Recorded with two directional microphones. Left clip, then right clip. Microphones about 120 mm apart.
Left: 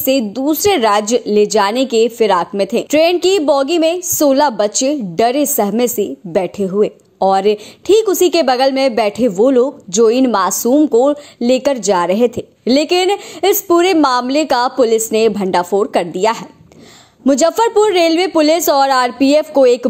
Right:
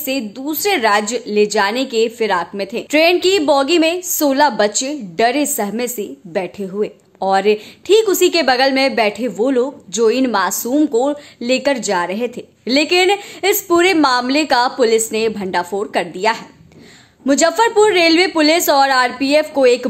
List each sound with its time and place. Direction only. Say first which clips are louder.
0.0 s a woman's voice: left 7 dB; 35° left (ahead or behind)